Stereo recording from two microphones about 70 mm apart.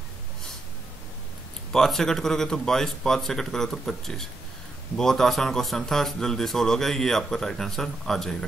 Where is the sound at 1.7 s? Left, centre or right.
Centre.